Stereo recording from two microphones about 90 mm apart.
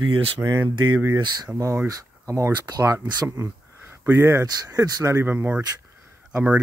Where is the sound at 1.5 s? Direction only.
30° right (ahead or behind).